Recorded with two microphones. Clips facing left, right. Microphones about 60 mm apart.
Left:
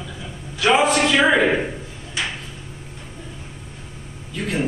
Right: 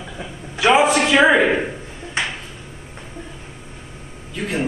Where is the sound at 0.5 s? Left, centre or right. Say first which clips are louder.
Right 2 dB; centre.